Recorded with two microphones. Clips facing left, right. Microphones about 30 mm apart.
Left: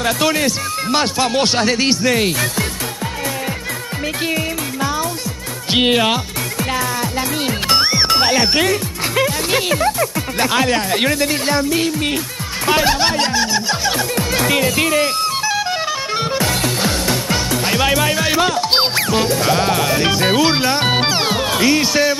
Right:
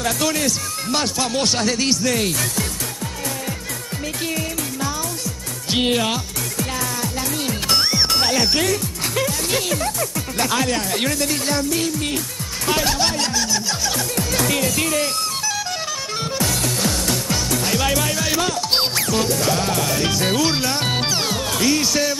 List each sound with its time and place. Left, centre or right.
0.0 s speech: left
5.7 s speech: left
12.6 s music: left